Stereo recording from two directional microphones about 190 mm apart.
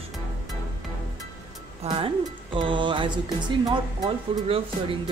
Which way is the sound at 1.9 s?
30° right (ahead or behind).